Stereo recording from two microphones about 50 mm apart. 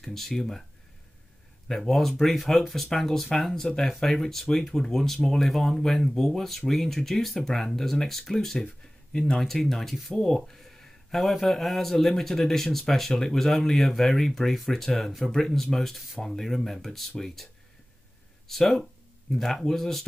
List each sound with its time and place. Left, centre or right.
0.0 s speech: centre
1.7 s speech: centre
9.1 s speech: centre
9.4 s speech: centre
18.5 s speech: centre